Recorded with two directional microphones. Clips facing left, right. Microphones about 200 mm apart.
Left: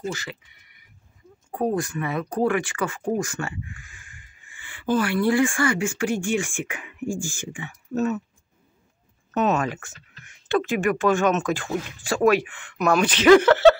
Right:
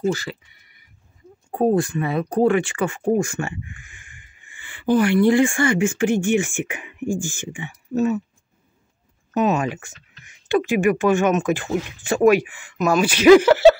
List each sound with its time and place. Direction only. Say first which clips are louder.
0.1 s speech: right 7 dB; 35° right (ahead or behind)
1.5 s speech: right 6 dB; 30° right (ahead or behind); by 8.2 s 10° right (ahead or behind)
9.3 s speech: right 2 dB; 10° right (ahead or behind)